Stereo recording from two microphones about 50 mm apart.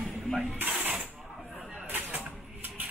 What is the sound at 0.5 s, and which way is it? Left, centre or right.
Coin, right.